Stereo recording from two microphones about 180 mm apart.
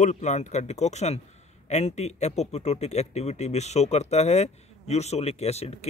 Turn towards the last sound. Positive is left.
turn(degrees=35)  # may be behind; listen again after turning